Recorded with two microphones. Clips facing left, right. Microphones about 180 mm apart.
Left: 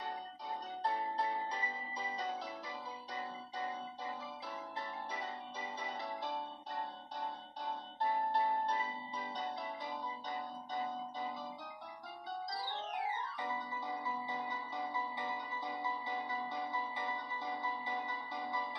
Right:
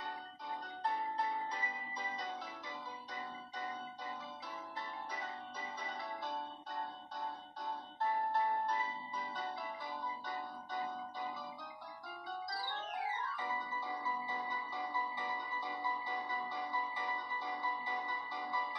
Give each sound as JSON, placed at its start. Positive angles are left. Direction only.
{"t": 8.4, "sound": "music", "side_deg": 30}
{"t": 12.4, "sound": "music", "side_deg": 25}
{"t": 13.4, "sound": "marimba", "side_deg": 25}
{"t": 14.9, "sound": "music", "side_deg": 20}